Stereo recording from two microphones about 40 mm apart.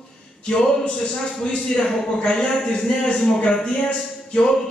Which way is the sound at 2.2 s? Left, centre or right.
Left.